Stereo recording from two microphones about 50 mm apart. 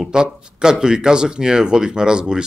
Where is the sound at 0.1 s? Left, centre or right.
Centre.